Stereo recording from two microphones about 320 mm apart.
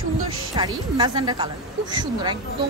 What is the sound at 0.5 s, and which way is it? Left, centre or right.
Speech, centre.